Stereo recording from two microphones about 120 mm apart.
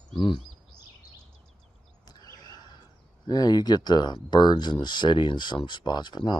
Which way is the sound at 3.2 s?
35° left (ahead or behind).